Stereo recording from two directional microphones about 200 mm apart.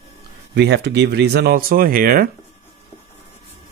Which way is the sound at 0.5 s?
60° right (ahead or behind).